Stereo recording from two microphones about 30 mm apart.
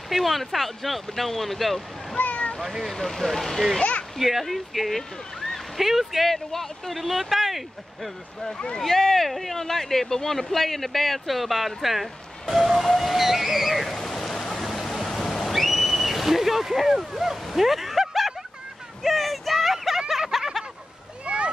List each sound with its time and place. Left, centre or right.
0.1 s speech: centre
2.1 s a sound: left
2.6 s speech: centre
2.9 s speech: centre
4.2 s speech: centre
5.8 s speech: centre
6.2 s speech: centre
6.9 s speech: centre
8.5 s speech: left
8.8 s speech: centre
13.9 s a sound: centre
17.6 s speech: centre
19.0 s a sound: centre
21.3 s a sound: right